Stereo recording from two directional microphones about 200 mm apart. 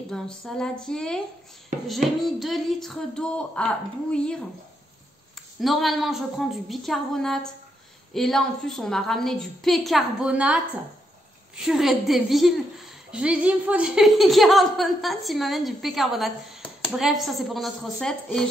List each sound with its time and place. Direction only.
0.1 s a woman's voice: 5° left (ahead or behind)
5.6 s a woman's voice: centre (ahead or behind)